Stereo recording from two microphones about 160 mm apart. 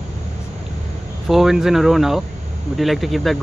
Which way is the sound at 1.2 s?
Centre (ahead or behind).